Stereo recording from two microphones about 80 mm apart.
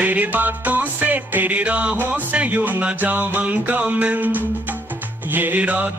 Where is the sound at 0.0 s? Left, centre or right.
Centre.